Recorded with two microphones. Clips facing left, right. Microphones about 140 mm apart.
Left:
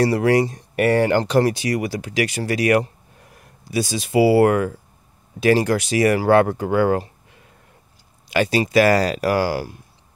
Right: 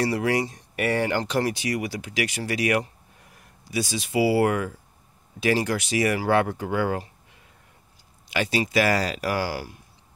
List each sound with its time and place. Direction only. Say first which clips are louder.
0.1 s speech: left 7 dB; 55° left (ahead or behind); by 4.2 s 40° left (ahead or behind)
4.2 s speech: left 6 dB; 55° left (ahead or behind)
8.3 s speech: left 6 dB; 50° left (ahead or behind)
9.4 s speech: left 7 dB; 70° left (ahead or behind)